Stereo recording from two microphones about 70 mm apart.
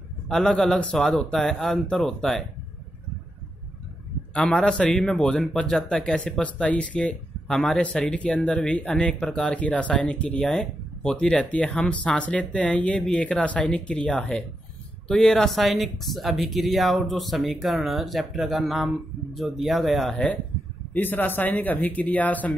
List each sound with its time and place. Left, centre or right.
0.3 s speech: centre
4.3 s speech: centre
20.9 s speech: left